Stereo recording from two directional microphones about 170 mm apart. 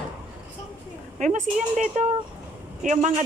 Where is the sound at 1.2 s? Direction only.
45° right (ahead or behind).